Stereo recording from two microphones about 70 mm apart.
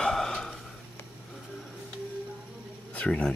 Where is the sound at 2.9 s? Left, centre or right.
Centre.